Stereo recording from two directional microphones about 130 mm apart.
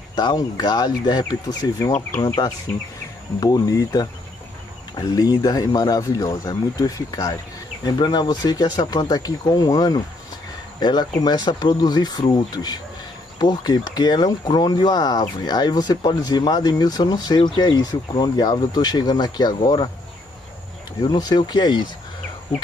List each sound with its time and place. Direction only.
0.1 s speech: 30° left (ahead or behind)
21.0 s speech: 35° left (ahead or behind)